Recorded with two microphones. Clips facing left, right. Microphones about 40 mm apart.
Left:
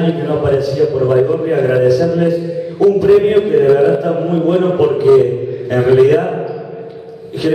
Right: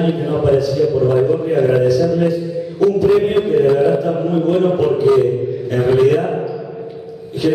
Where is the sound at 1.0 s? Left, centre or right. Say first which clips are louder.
Left 2 dB; centre.